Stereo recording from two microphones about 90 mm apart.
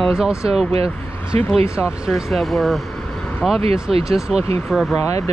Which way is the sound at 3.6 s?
90° right.